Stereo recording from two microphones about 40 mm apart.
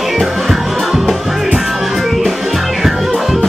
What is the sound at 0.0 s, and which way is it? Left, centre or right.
Music, centre.